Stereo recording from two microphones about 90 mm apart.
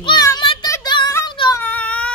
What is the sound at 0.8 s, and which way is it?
Child singing, 55° left (ahead or behind).